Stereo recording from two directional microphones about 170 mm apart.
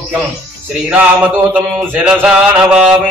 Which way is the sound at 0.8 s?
10° right (ahead or behind).